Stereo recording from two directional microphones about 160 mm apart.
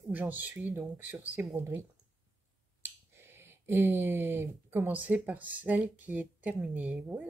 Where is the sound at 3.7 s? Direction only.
15° right (ahead or behind).